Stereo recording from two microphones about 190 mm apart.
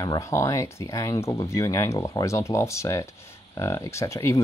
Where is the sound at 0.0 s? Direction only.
20° left (ahead or behind).